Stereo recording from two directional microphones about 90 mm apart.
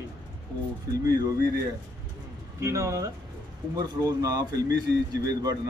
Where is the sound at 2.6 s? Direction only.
35° right (ahead or behind).